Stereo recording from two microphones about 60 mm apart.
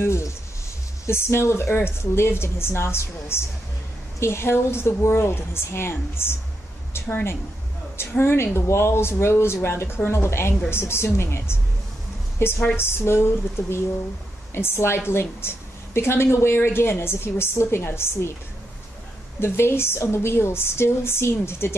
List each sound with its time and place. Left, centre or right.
0.0 s a sound: left
1.0 s a woman's voice: left
8.0 s a woman's voice: left
19.4 s a woman's voice: left